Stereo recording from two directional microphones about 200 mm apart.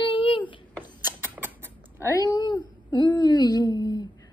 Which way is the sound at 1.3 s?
10° right (ahead or behind).